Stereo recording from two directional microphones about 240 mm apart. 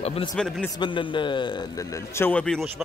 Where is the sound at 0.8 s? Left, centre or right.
Centre.